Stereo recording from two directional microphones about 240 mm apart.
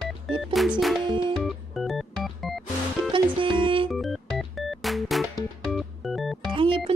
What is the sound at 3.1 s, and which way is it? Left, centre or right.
Music, right.